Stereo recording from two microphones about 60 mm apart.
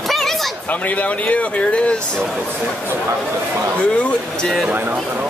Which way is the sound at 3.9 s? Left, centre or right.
Centre.